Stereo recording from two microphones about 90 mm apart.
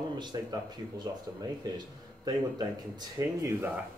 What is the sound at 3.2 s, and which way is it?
Speech, 40° right (ahead or behind).